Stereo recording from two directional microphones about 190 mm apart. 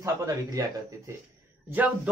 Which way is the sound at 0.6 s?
20° right (ahead or behind).